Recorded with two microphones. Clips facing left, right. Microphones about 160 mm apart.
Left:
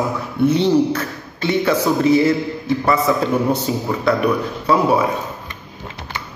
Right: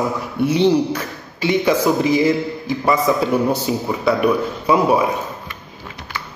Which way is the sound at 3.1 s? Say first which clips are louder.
Even; 15° right (ahead or behind).